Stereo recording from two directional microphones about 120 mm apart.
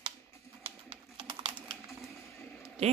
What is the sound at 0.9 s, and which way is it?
Typing, 45° right (ahead or behind).